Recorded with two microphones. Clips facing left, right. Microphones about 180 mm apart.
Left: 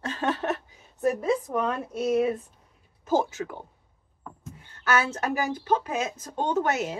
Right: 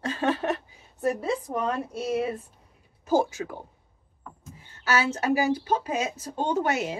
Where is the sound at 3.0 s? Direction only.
10° right (ahead or behind).